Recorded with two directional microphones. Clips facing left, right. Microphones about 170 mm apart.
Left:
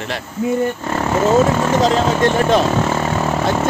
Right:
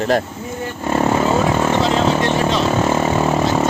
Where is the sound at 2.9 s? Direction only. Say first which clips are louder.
Right 2 dB; 10° right (ahead or behind).